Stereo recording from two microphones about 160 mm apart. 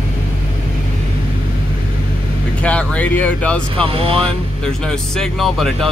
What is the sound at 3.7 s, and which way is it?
Speech, 35° right (ahead or behind).